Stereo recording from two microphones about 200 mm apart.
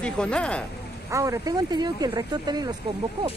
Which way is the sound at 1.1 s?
15° right (ahead or behind).